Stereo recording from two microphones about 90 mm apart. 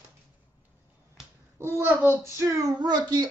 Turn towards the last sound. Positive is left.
turn(degrees=-50)  # may be behind; listen again after turning